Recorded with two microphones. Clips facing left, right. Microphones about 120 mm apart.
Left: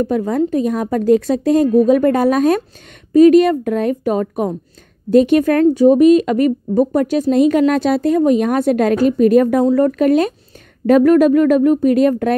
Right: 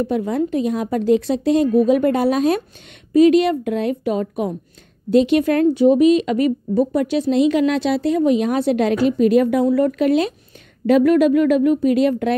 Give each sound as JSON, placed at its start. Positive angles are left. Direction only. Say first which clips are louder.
{"t": 0.0, "sound": "speech", "louder": "left 3 dB", "side_deg": 45}